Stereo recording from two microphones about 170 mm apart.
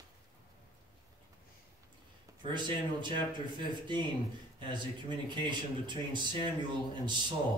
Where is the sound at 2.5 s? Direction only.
25° right (ahead or behind).